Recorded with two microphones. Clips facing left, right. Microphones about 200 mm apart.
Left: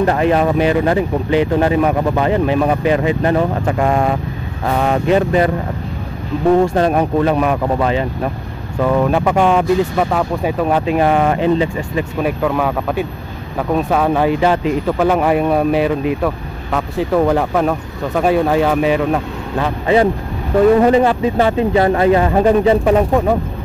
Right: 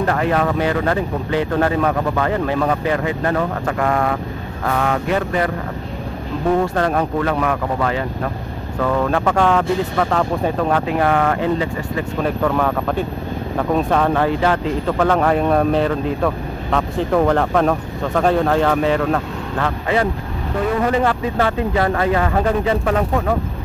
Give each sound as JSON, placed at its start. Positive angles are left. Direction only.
{"t": 0.0, "sound": "speech", "side_deg": 20}
{"t": 6.6, "sound": "speech", "side_deg": 15}